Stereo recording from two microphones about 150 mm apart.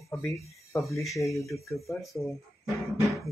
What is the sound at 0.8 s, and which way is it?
Speech, 20° left (ahead or behind).